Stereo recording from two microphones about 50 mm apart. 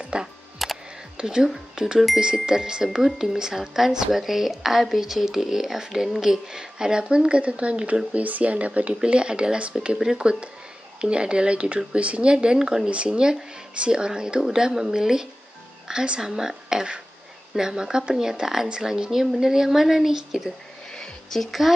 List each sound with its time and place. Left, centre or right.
0.0 s music: right
0.6 s music: centre
1.1 s a woman's voice: centre
20.9 s a sound: centre